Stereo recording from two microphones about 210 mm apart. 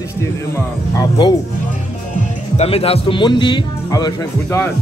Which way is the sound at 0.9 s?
20° left (ahead or behind).